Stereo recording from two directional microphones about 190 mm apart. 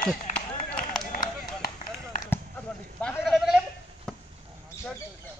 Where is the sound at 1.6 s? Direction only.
45° left (ahead or behind).